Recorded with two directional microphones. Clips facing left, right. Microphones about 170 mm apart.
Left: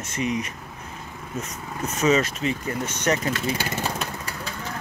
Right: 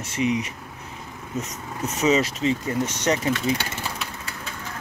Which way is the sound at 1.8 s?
20° right (ahead or behind).